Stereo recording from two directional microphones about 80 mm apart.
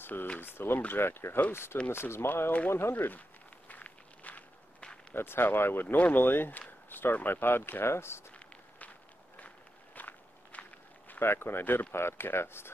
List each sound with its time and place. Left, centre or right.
0.0 s speech: left
3.6 s walk: centre
5.1 s speech: left
8.3 s walk: centre
9.9 s walk: left
11.1 s speech: left